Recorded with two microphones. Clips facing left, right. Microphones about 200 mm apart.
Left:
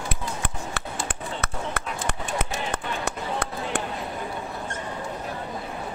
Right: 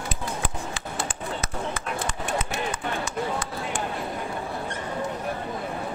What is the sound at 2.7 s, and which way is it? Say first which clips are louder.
Run: even; 60° left (ahead or behind).